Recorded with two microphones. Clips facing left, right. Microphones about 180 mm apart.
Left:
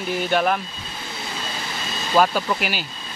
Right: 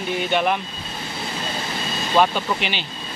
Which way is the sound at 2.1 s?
5° left (ahead or behind).